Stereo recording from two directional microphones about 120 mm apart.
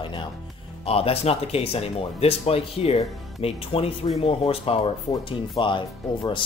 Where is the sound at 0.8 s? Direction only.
55° left (ahead or behind).